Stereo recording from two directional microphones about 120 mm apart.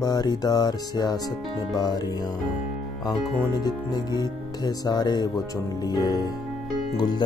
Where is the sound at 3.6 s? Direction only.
35° left (ahead or behind).